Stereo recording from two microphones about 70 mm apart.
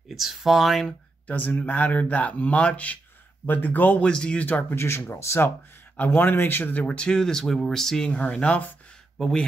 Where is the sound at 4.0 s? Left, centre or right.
Centre.